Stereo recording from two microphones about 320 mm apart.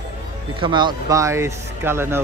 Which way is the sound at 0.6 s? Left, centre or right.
Centre.